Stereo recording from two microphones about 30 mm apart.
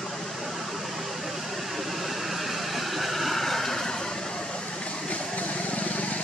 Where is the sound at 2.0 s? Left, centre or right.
Centre.